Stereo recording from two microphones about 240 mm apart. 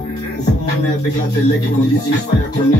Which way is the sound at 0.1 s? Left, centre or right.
Left.